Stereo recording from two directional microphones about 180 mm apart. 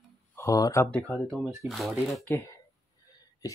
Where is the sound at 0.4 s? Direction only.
20° left (ahead or behind).